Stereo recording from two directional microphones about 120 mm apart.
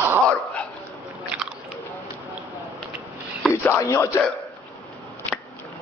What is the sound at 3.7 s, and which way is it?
Speech, 25° left (ahead or behind).